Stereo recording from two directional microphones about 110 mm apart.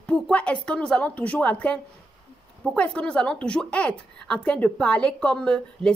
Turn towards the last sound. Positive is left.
turn(degrees=10)  # may be behind; listen again after turning